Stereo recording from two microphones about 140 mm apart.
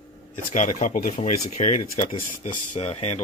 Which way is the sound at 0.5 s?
65° left (ahead or behind).